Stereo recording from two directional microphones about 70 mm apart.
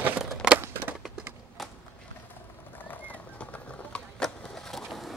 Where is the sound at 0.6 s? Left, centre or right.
Right.